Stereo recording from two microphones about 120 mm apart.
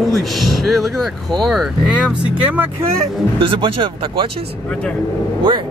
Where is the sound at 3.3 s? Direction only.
45° right (ahead or behind).